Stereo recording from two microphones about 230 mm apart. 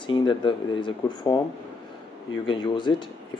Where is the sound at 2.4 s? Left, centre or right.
Centre.